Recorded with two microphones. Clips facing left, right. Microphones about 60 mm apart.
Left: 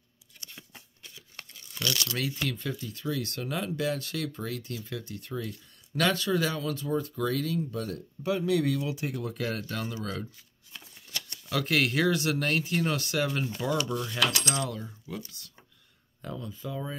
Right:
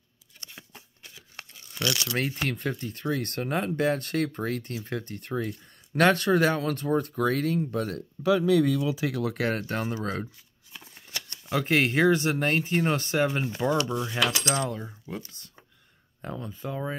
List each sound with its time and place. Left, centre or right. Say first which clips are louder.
0.5 s shuffling cards: right 2 dB; centre
1.1 s tearing: right 2 dB; right
1.9 s speech: right 2 dB; centre
2.1 s speech: right 3 dB; right
9.0 s speech: right 5 dB; right
10.3 s shuffling cards: right 1 dB; centre
11.0 s speech: right 1 dB; right